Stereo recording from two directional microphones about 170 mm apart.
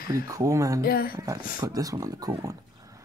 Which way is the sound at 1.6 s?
20° right (ahead or behind).